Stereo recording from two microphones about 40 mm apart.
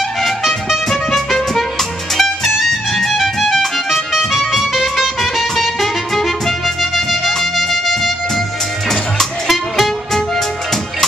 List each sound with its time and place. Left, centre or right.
0.2 s music: centre
1.5 s music: centre
8.8 s music: centre